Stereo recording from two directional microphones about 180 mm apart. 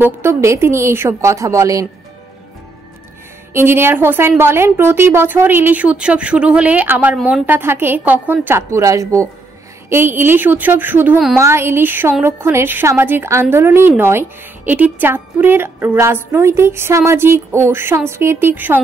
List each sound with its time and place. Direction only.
0.0 s a woman's voice: 15° right (ahead or behind)
3.5 s a woman's voice: 15° right (ahead or behind)